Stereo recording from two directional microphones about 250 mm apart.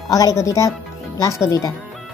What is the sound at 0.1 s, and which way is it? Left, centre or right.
Speech, centre.